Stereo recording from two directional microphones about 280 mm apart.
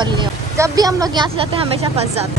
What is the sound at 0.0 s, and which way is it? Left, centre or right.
Speech, centre.